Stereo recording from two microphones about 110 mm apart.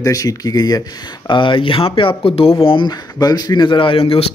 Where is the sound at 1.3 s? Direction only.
50° left (ahead or behind).